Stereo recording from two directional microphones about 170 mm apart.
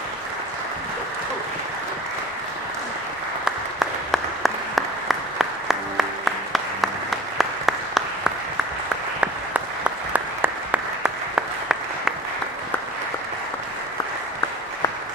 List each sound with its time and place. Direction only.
3.4 s applause: centre (ahead or behind)
10.1 s applause: 10° right (ahead or behind)